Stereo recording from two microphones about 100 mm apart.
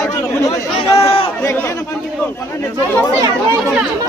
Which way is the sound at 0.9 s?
80° left.